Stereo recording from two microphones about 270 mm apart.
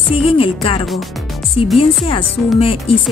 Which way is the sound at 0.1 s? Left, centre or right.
Left.